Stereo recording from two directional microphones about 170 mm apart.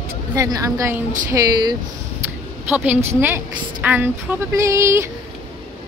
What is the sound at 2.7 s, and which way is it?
A woman's voice, 10° right (ahead or behind).